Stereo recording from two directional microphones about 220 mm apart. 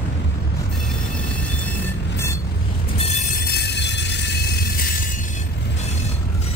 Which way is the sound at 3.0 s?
30° left (ahead or behind).